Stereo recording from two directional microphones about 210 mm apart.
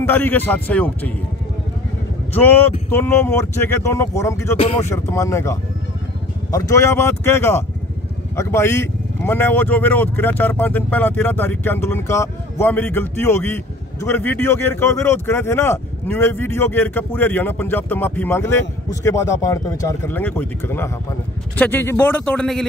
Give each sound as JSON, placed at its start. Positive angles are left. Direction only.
{"t": 0.0, "sound": "speech", "side_deg": 10}
{"t": 2.9, "sound": "speech", "side_deg": 10}
{"t": 4.6, "sound": "speech", "side_deg": 30}
{"t": 4.8, "sound": "speech", "side_deg": 10}